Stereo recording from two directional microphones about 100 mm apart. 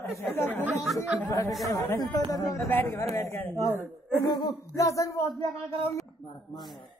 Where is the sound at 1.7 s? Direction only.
35° left (ahead or behind).